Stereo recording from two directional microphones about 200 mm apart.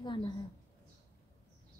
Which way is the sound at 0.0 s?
25° left (ahead or behind).